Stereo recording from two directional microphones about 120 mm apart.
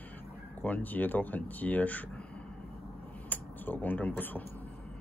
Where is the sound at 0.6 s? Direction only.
15° left (ahead or behind).